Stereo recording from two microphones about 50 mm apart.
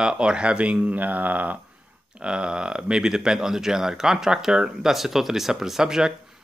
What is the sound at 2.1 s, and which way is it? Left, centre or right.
Speech, centre.